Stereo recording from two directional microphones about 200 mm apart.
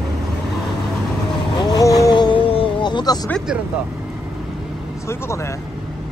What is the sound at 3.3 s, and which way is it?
Speech, 5° right (ahead or behind).